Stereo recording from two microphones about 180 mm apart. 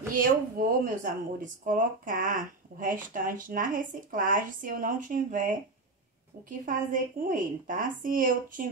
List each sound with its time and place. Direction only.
0.1 s speech: 50° right (ahead or behind)
6.6 s speech: 50° right (ahead or behind)